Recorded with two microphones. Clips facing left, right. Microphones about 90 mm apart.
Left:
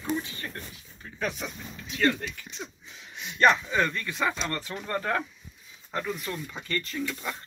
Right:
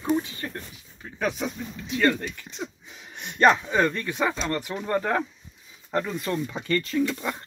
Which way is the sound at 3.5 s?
25° right (ahead or behind).